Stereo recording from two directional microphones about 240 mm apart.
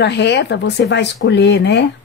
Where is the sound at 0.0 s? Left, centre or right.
Left.